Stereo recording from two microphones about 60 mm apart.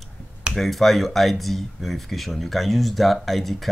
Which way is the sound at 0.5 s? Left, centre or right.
Centre.